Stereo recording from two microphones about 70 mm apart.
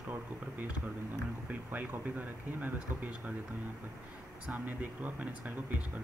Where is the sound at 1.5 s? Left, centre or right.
Right.